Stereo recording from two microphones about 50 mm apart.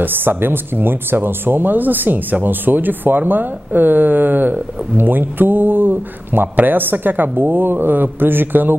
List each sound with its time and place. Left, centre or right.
0.0 s speech: right